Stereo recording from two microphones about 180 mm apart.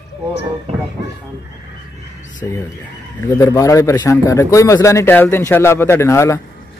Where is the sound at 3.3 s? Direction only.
20° left (ahead or behind).